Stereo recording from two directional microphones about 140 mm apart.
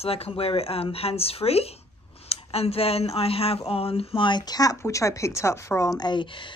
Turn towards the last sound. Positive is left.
turn(degrees=35)  # may be behind; listen again after turning